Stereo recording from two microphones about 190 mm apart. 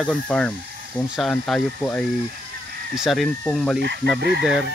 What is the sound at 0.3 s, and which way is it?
Speech, 5° left (ahead or behind).